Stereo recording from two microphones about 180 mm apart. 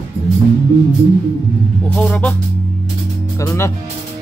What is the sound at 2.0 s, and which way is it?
Speech, 5° left (ahead or behind).